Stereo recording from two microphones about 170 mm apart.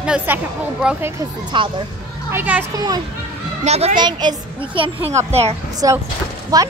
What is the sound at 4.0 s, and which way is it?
Speech, 25° right (ahead or behind).